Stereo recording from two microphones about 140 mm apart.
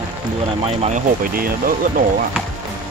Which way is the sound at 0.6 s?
50° right (ahead or behind).